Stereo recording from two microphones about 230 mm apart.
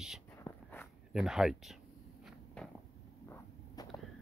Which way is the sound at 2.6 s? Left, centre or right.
Centre.